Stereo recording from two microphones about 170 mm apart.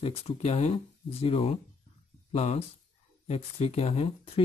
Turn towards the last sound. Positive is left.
turn(degrees=35)  # may be behind; listen again after turning